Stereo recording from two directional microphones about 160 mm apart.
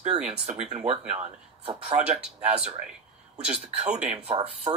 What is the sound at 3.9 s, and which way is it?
Speech, 45° right (ahead or behind).